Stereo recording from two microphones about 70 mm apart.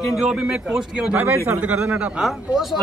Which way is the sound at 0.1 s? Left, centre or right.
Centre.